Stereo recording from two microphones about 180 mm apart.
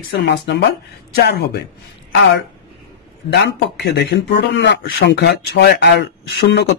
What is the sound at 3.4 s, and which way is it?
Speech, 70° left (ahead or behind).